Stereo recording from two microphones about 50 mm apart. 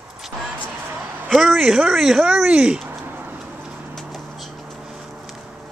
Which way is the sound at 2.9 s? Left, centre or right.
Right.